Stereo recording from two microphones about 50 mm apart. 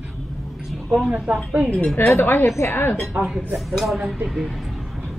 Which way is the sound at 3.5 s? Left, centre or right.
Centre.